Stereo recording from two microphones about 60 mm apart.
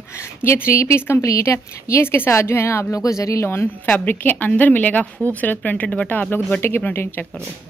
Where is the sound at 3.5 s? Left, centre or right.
Left.